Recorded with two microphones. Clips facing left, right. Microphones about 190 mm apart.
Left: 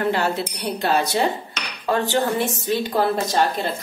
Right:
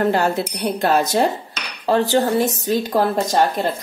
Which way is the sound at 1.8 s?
35° right (ahead or behind).